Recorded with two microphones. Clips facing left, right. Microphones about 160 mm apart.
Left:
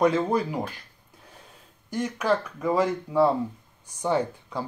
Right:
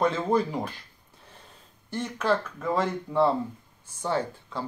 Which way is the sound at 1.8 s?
10° left (ahead or behind).